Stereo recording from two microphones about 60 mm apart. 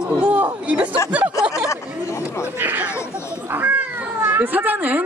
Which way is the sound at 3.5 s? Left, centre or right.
Right.